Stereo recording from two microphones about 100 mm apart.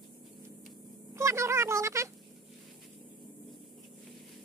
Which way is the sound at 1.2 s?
30° right (ahead or behind).